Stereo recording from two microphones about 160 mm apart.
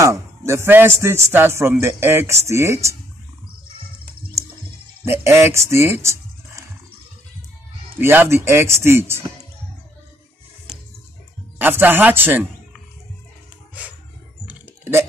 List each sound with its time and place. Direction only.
0.0 s a man's voice: 20° right (ahead or behind)
5.0 s speech: 15° right (ahead or behind)
8.0 s a man's voice: 15° right (ahead or behind)
11.5 s a man's voice: 15° right (ahead or behind)
14.5 s typing: 15° right (ahead or behind)